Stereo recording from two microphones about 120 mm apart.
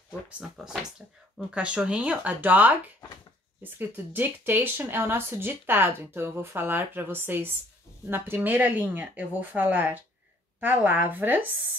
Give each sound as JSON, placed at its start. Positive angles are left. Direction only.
{"t": 1.5, "sound": "speech", "side_deg": -10}